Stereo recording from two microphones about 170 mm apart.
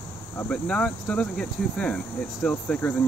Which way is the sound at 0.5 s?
5° left (ahead or behind).